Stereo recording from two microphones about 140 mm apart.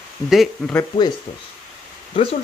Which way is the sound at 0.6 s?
Centre (ahead or behind).